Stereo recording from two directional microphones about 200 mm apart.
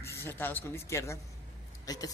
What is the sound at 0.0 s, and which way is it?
Speech, 15° left (ahead or behind).